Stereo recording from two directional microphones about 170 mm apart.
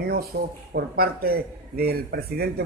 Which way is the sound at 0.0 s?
60° right (ahead or behind).